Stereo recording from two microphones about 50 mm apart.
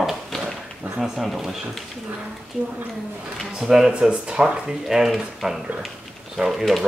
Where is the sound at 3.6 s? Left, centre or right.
Centre.